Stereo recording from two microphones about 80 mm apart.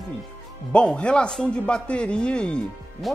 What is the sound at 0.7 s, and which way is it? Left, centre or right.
Speech, centre.